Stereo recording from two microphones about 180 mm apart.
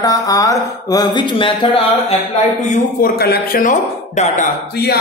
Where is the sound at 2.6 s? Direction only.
55° left (ahead or behind); by 4.5 s 40° left (ahead or behind).